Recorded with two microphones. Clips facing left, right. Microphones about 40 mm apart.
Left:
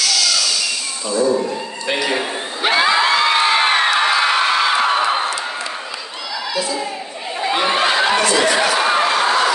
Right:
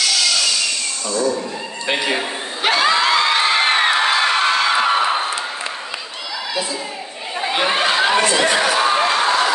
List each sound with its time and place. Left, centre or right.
1.1 s speech: centre
1.9 s speech: right
2.1 s a sound: centre
3.7 s whoop: centre
4.1 s music: centre
7.3 s snicker: centre
8.2 s chatter: right
8.7 s a sound: centre